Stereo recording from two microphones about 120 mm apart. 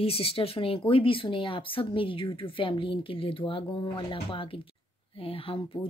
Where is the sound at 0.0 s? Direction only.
55° left (ahead or behind).